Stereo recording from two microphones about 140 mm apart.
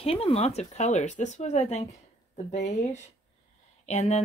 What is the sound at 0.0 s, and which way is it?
Speech, 45° left (ahead or behind).